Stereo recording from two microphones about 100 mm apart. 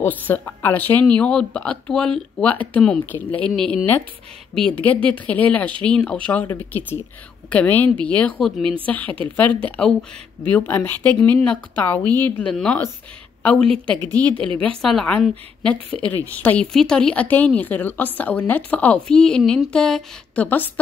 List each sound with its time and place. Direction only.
0.0 s a woman's voice: 20° left (ahead or behind)
20.4 s a woman's voice: 20° left (ahead or behind)